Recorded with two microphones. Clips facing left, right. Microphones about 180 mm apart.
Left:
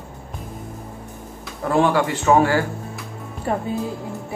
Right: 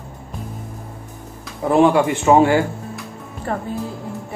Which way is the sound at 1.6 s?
20° right (ahead or behind).